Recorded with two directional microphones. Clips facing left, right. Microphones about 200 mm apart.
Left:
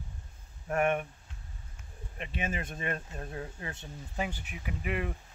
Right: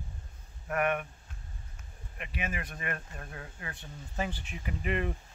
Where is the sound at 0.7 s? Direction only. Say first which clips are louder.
Left 2 dB; 30° left (ahead or behind).